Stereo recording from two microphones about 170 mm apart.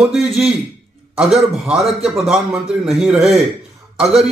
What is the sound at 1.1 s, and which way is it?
A man's voice, 5° right (ahead or behind).